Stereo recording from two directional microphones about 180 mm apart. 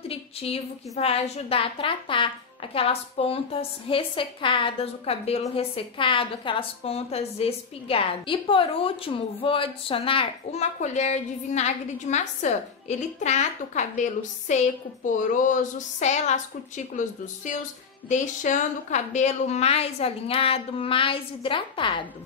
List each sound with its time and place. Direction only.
0.1 s a woman's voice: 35° left (ahead or behind)